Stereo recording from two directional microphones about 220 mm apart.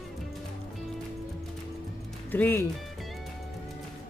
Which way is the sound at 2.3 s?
10° left (ahead or behind).